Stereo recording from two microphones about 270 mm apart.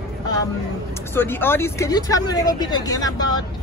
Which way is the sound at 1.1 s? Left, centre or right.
Centre.